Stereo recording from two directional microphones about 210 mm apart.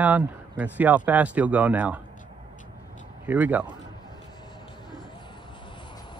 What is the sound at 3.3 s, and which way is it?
Speech, 10° right (ahead or behind).